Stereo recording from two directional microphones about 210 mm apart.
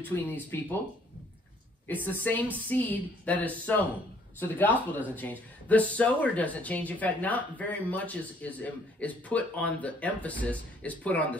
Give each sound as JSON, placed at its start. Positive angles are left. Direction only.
{"t": 0.1, "sound": "speech", "side_deg": 10}
{"t": 2.0, "sound": "speech", "side_deg": 10}